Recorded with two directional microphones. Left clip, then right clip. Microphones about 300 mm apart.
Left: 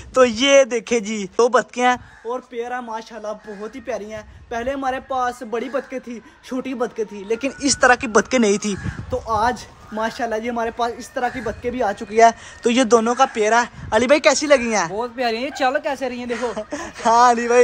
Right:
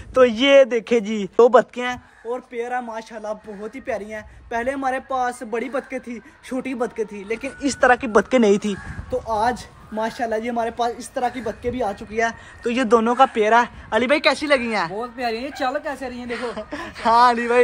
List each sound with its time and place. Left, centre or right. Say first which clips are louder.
0.1 s speech: even; centre
12.0 s a man's voice: left 9 dB; left
12.8 s speech: right 1 dB; centre